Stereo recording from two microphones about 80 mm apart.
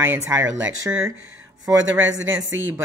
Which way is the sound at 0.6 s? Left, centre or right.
Centre.